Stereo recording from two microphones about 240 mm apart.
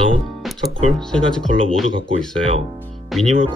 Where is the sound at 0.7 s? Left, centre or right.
Right.